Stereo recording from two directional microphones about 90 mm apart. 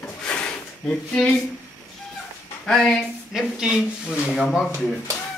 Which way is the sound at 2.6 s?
10° left (ahead or behind).